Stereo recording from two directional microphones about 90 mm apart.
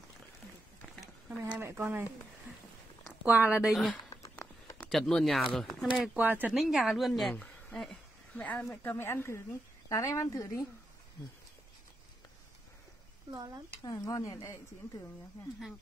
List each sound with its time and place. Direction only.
1.3 s speech: 30° right (ahead or behind)
3.3 s speech: 20° right (ahead or behind)
3.6 s a woman's voice: centre (ahead or behind)
4.9 s a woman's voice: 5° left (ahead or behind)
6.1 s speech: 20° right (ahead or behind)
6.5 s a woman's voice: 5° right (ahead or behind)
7.3 s a sound: 15° left (ahead or behind)
7.9 s speech: 15° left (ahead or behind); by 10.6 s 40° left (ahead or behind)
13.8 s speech: 40° left (ahead or behind)